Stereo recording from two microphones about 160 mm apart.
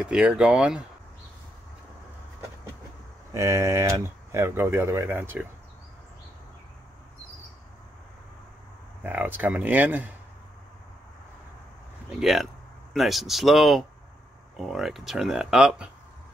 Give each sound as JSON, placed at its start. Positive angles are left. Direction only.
{"t": 0.0, "sound": "speech", "side_deg": -5}
{"t": 3.3, "sound": "speech", "side_deg": -20}
{"t": 9.0, "sound": "speech", "side_deg": -10}
{"t": 12.2, "sound": "speech", "side_deg": 0}